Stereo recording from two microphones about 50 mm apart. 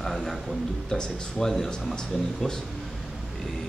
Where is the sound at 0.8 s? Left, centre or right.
Centre.